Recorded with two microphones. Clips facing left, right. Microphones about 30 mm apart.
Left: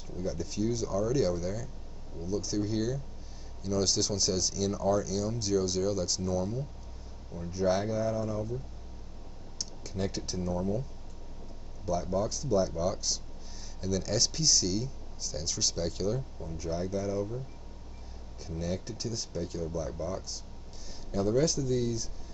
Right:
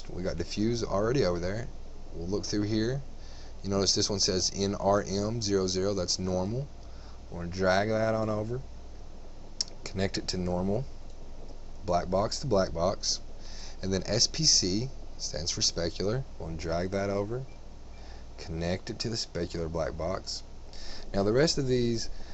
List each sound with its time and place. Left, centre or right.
0.0 s speech: right
7.3 s speech: right
9.6 s speech: right
16.5 s speech: right
18.4 s speech: right